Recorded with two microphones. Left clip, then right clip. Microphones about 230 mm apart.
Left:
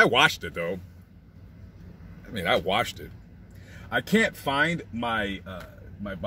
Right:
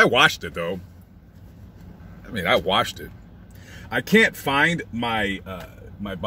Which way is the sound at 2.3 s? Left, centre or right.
Centre.